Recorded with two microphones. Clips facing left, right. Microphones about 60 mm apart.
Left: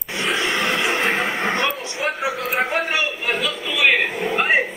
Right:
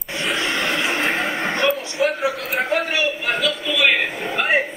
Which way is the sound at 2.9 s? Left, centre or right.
Left.